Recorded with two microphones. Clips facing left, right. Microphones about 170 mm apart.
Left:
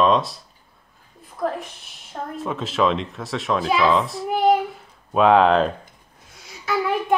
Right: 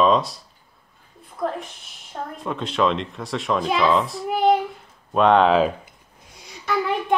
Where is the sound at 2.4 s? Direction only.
Centre (ahead or behind).